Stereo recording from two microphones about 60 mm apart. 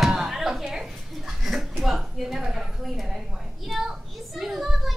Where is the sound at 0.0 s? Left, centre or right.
Centre.